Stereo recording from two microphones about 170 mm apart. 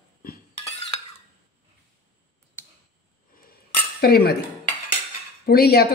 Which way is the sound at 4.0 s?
65° left (ahead or behind).